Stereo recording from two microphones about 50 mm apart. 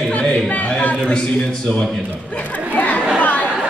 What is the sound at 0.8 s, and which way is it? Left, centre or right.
Speech, left.